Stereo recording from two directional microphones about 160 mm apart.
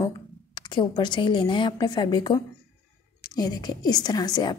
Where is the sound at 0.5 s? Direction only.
30° left (ahead or behind).